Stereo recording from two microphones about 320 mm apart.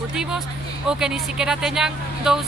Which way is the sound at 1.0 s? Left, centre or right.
Centre.